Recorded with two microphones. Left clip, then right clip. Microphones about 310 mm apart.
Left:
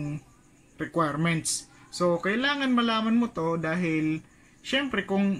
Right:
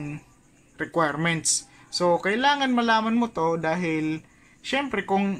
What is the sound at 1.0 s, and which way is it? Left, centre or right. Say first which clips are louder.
Speech: right 3 dB; right.